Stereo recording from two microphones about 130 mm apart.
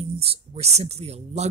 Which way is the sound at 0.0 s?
50° right (ahead or behind).